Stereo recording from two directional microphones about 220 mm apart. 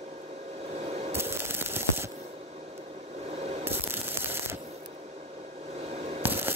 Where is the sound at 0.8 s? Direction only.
30° right (ahead or behind).